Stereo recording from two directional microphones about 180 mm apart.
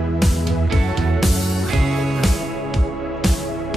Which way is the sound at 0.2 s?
Centre (ahead or behind).